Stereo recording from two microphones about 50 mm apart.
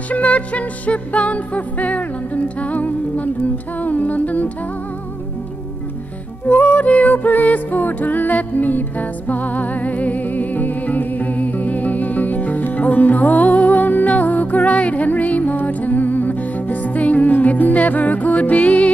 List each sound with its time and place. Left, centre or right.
0.1 s music: left
6.5 s music: left